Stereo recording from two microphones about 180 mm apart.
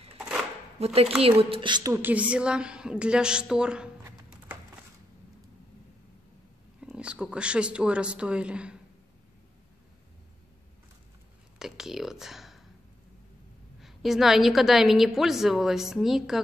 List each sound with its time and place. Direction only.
0.7 s speech: 35° right (ahead or behind)
2.0 s a woman's voice: 10° right (ahead or behind)
6.8 s speech: 5° right (ahead or behind)
11.5 s speech: 5° right (ahead or behind)
13.7 s a woman's voice: centre (ahead or behind)